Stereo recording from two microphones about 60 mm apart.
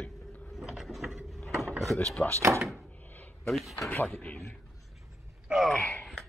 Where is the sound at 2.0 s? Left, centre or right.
Centre.